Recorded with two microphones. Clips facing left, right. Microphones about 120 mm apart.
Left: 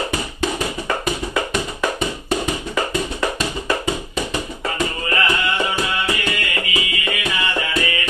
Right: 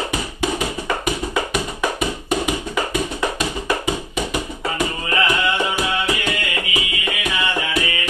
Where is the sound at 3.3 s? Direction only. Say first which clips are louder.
Even; 10° right (ahead or behind).